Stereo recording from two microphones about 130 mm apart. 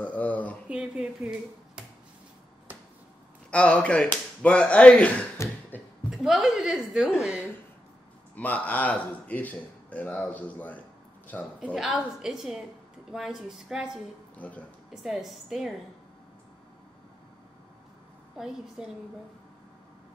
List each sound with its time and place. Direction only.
0.0 s a sound: 10° left (ahead or behind)
0.7 s a sound: 10° right (ahead or behind)
3.4 s speech: 10° left (ahead or behind)
5.4 s a sound: 20° left (ahead or behind)
6.0 s a woman's voice: 5° right (ahead or behind)
8.4 s speech: 10° left (ahead or behind)
11.7 s a woman's voice: 5° right (ahead or behind)
14.3 s speech: 10° left (ahead or behind)
15.0 s a woman's voice: centre (ahead or behind)
18.4 s a woman's voice: 5° right (ahead or behind)